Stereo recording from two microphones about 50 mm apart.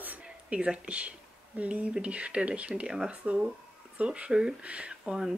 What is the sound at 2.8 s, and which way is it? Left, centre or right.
Speech, centre.